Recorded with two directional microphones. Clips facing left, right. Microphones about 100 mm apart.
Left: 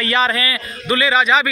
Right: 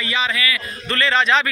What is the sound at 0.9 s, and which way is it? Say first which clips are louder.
Speech: left 3 dB; 10° left (ahead or behind).